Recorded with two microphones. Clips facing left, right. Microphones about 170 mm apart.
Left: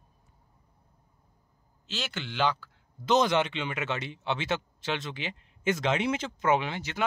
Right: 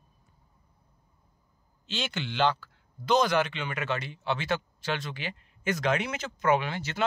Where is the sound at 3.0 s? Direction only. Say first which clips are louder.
Even; 20° left (ahead or behind).